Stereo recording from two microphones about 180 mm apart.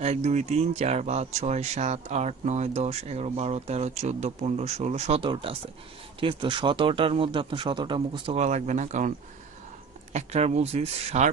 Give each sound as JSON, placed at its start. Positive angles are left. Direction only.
{"t": 0.0, "sound": "a man's voice", "side_deg": -40}
{"t": 10.1, "sound": "speech", "side_deg": -35}